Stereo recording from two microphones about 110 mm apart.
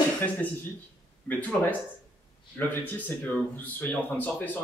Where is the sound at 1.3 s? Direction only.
15° left (ahead or behind).